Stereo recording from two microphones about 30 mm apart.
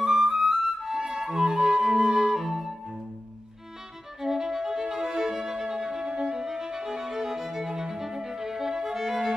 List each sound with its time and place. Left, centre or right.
0.0 s music: centre
4.2 s violin: centre
7.7 s violin: right
8.0 s music: centre